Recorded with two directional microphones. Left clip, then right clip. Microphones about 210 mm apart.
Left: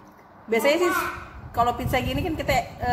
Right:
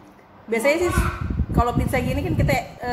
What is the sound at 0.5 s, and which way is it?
A woman's voice, 5° left (ahead or behind).